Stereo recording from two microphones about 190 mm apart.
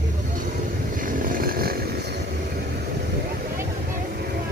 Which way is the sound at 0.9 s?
45° right (ahead or behind).